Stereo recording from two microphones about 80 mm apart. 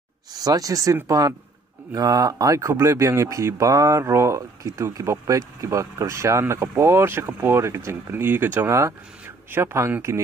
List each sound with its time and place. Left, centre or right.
0.3 s speech: right